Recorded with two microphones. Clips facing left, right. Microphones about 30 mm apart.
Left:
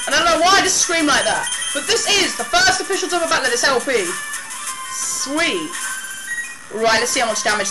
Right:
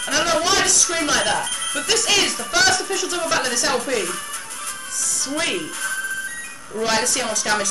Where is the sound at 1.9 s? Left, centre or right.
Centre.